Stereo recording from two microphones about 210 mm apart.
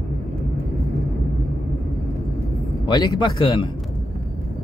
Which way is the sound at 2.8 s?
20° left (ahead or behind).